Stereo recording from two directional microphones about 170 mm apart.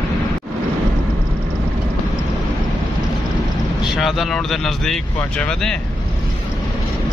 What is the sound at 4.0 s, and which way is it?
Speech, centre (ahead or behind).